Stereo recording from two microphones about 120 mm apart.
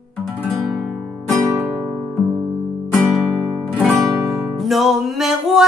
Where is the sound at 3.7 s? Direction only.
Centre (ahead or behind).